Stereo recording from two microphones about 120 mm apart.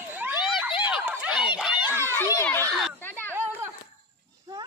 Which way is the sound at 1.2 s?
5° right (ahead or behind).